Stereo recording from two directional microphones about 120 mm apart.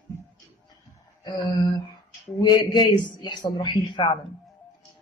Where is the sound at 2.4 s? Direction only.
35° left (ahead or behind).